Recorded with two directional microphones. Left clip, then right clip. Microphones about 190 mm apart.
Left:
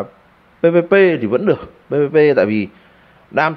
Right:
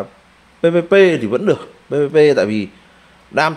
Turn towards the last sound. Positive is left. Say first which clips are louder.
# even
turn(degrees=-5)  # may be behind; listen again after turning